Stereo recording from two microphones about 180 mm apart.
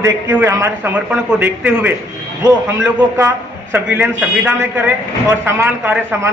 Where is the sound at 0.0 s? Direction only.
10° right (ahead or behind).